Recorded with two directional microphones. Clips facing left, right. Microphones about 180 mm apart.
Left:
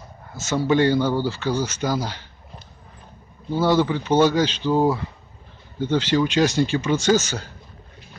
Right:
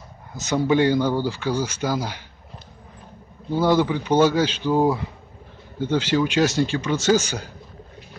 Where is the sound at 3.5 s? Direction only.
15° right (ahead or behind); by 7.0 s 5° left (ahead or behind).